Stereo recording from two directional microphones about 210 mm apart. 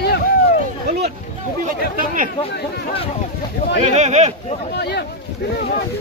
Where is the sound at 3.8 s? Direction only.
35° right (ahead or behind).